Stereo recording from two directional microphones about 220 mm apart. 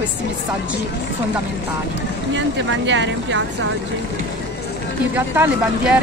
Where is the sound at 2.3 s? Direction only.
55° right (ahead or behind).